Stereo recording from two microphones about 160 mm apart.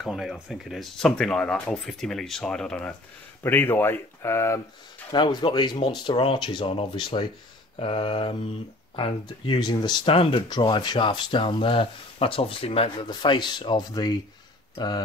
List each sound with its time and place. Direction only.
0.0 s speech: centre (ahead or behind); by 4.6 s 15° left (ahead or behind)
5.1 s speech: 30° left (ahead or behind)
7.8 s mantra: 35° left (ahead or behind)
8.9 s speech: 30° left (ahead or behind)